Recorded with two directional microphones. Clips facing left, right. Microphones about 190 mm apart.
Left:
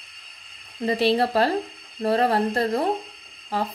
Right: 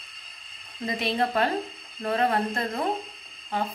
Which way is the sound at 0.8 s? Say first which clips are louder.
Left 6 dB; 35° left (ahead or behind).